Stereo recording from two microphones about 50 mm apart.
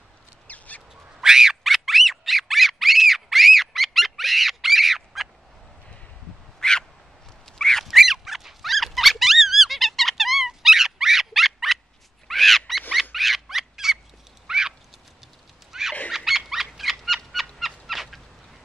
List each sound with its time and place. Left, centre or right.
0.5 s duck: left
1.2 s a sound: centre
6.6 s crow: centre
7.4 s bird: centre
7.8 s dog: centre
12.3 s a sound: centre
15.7 s a sound: centre
16.1 s wild animals: centre
17.6 s fowl: centre